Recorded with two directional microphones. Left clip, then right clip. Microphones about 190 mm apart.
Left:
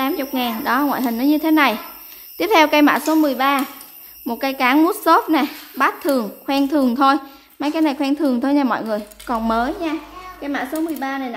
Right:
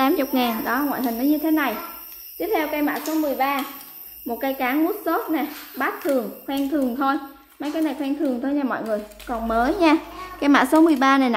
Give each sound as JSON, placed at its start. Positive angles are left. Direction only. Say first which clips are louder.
{"t": 0.0, "sound": "speech", "louder": "right 1 dB", "side_deg": -5}
{"t": 0.7, "sound": "speech", "louder": "left 5 dB", "side_deg": 15}
{"t": 2.3, "sound": "a woman's voice", "louder": "left 9 dB", "side_deg": 50}
{"t": 4.3, "sound": "speech", "louder": "left 5 dB", "side_deg": 20}
{"t": 4.8, "sound": "speech", "louder": "left 8 dB", "side_deg": 35}
{"t": 9.8, "sound": "a child's voice", "louder": "right 7 dB", "side_deg": -15}
{"t": 10.4, "sound": "speech", "louder": "right 8 dB", "side_deg": -30}